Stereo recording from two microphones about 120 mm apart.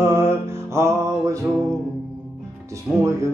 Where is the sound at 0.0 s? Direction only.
20° right (ahead or behind).